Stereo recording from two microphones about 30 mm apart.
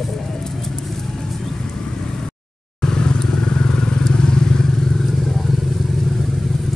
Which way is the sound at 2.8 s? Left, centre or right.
Left.